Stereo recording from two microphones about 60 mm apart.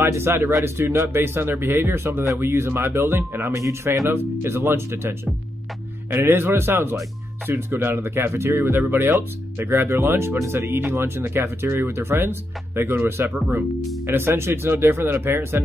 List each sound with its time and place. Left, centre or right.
0.1 s speech: right
3.5 s speech: right
4.1 s speech: right